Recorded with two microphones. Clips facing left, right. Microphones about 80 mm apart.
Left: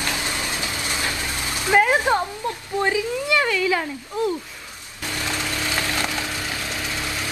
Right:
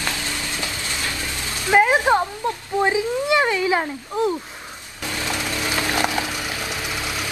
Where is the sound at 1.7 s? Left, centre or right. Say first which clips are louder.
Right 2 dB; centre.